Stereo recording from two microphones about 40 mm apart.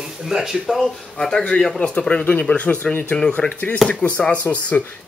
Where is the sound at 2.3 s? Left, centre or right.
Left.